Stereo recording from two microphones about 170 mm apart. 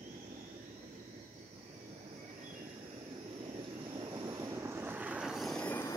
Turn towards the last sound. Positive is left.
turn(degrees=10)  # may be behind; listen again after turning